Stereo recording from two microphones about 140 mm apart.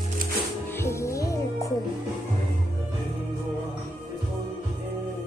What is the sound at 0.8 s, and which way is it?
Music, 20° left (ahead or behind).